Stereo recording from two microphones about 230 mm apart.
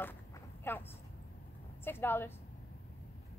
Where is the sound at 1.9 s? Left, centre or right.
Centre.